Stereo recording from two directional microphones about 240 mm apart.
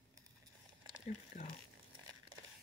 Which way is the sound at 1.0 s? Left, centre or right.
Left.